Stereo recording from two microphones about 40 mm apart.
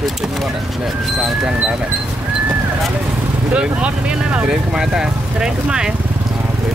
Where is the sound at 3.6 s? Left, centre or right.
Right.